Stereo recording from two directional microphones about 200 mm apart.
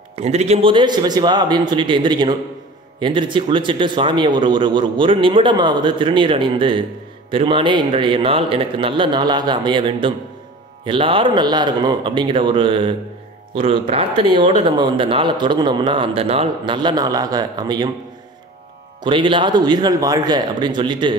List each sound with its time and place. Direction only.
0.1 s speech: 30° right (ahead or behind)
19.0 s speech: 25° right (ahead or behind)